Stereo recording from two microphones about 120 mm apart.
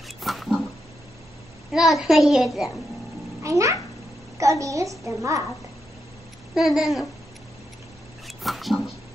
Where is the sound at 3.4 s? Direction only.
25° right (ahead or behind).